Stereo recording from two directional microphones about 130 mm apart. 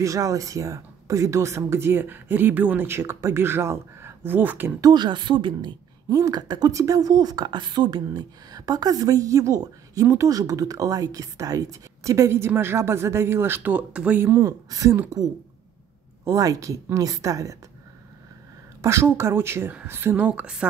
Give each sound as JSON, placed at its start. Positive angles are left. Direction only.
{"t": 0.0, "sound": "a woman's voice", "side_deg": -25}
{"t": 4.7, "sound": "a woman's voice", "side_deg": -30}
{"t": 16.3, "sound": "a woman's voice", "side_deg": -25}
{"t": 18.8, "sound": "speech", "side_deg": -20}